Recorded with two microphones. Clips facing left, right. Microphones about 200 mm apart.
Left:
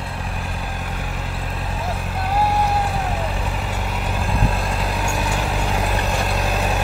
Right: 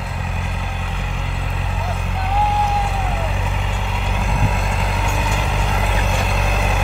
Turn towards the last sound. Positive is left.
turn(degrees=5)  # may be behind; listen again after turning